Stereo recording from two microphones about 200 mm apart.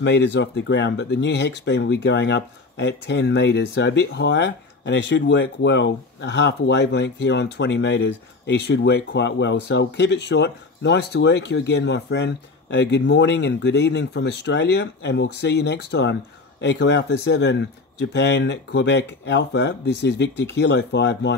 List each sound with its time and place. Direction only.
0.0 s speech: 60° left (ahead or behind)